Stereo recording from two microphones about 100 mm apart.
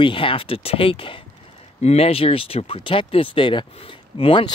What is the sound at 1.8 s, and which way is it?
Speech, 90° left.